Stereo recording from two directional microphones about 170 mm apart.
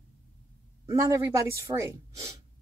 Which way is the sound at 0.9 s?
20° right (ahead or behind).